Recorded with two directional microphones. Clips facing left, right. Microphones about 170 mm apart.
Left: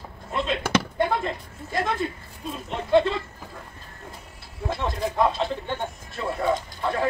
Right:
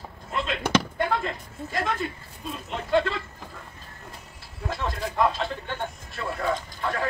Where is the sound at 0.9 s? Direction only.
15° left (ahead or behind).